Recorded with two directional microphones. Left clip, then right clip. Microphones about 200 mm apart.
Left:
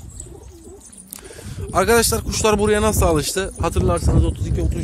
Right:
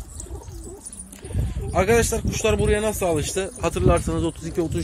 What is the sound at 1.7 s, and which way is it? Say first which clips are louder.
Speech: left 3 dB; 40° left (ahead or behind).